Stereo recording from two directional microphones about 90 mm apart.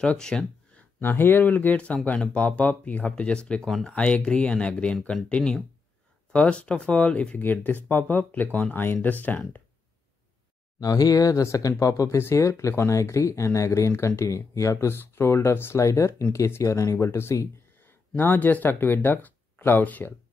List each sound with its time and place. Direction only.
0.0 s speech: 10° left (ahead or behind)
10.8 s speech: 45° left (ahead or behind); by 20.2 s 20° left (ahead or behind)